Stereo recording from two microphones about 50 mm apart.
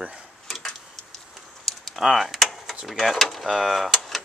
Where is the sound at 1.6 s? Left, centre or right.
Centre.